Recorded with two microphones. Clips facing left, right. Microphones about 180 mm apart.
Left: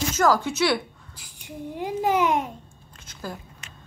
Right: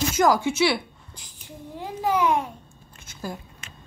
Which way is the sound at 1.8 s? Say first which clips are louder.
Left 1 dB; 20° left (ahead or behind).